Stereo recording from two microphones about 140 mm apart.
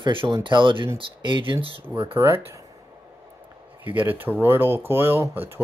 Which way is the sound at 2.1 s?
15° right (ahead or behind).